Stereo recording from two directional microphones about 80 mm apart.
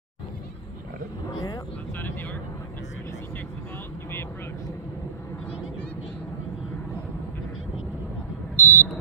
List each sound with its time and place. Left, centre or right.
8.5 s buzzer: left